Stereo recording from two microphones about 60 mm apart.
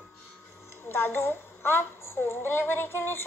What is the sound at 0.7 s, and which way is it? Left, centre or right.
Speech, left.